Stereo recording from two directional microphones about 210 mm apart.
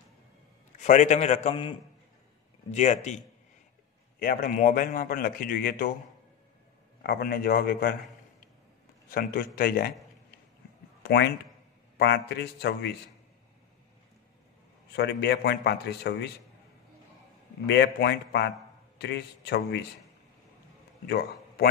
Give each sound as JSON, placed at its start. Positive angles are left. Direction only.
{"t": 0.7, "sound": "a man's voice", "side_deg": 35}
{"t": 4.2, "sound": "a man's voice", "side_deg": 45}
{"t": 7.0, "sound": "a man's voice", "side_deg": 50}
{"t": 9.1, "sound": "a man's voice", "side_deg": 40}
{"t": 11.0, "sound": "a man's voice", "side_deg": 50}
{"t": 14.9, "sound": "a man's voice", "side_deg": 50}
{"t": 17.6, "sound": "a man's voice", "side_deg": 55}
{"t": 21.1, "sound": "a man's voice", "side_deg": 50}